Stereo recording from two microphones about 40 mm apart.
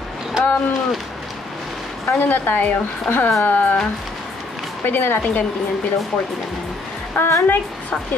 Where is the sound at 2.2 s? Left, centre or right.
Left.